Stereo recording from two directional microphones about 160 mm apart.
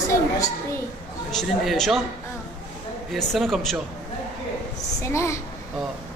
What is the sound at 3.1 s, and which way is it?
Speech, centre (ahead or behind).